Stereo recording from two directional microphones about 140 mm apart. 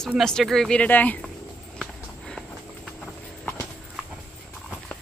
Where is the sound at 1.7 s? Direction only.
5° left (ahead or behind).